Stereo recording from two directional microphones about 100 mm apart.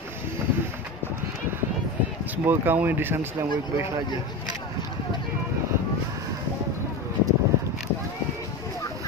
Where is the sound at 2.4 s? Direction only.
20° right (ahead or behind).